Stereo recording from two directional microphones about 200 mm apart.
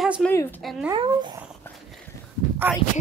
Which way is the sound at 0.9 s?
25° right (ahead or behind).